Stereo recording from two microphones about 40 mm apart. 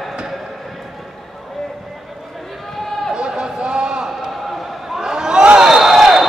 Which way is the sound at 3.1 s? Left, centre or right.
Centre.